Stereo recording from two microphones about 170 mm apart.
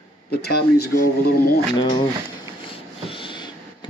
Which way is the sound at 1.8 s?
30° left (ahead or behind).